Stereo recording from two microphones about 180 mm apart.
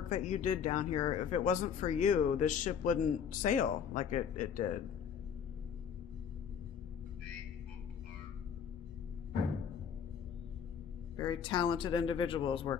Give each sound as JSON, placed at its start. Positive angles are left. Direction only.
{"t": 0.1, "sound": "speech", "side_deg": 40}
{"t": 11.1, "sound": "speech", "side_deg": 25}